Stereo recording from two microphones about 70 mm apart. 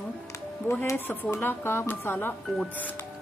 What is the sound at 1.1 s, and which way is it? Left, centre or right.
Speech, left.